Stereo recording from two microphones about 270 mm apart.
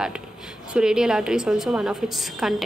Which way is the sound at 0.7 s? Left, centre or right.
Centre.